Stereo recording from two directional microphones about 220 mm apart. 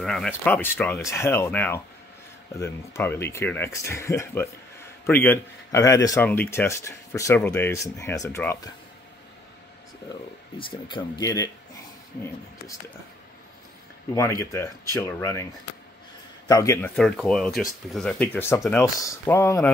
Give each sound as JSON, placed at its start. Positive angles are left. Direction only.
{"t": 0.0, "sound": "speech", "side_deg": 0}
{"t": 10.6, "sound": "speech", "side_deg": 20}
{"t": 14.1, "sound": "speech", "side_deg": 15}
{"t": 16.4, "sound": "speech", "side_deg": 15}